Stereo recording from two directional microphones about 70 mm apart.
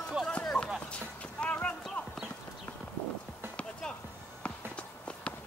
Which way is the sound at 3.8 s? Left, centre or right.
Centre.